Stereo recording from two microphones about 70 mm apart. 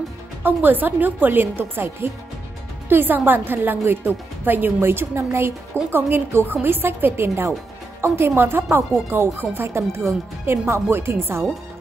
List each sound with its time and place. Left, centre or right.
0.4 s a woman's voice: right